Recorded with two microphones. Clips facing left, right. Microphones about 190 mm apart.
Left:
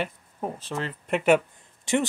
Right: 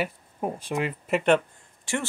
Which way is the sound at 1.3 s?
20° left (ahead or behind).